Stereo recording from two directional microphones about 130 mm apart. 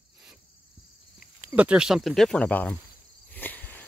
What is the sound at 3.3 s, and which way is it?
Cricket, 15° left (ahead or behind).